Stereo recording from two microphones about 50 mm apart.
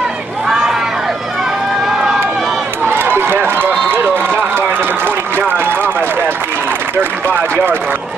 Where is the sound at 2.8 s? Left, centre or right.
Right.